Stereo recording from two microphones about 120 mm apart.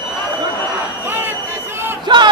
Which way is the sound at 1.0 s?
20° right (ahead or behind).